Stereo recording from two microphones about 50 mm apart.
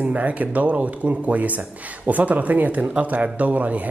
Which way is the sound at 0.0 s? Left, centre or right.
Right.